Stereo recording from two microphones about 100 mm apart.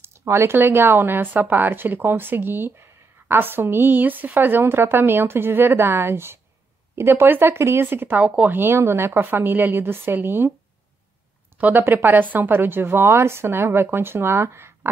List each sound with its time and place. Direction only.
0.0 s speech: 25° right (ahead or behind)
11.5 s speech: 20° right (ahead or behind)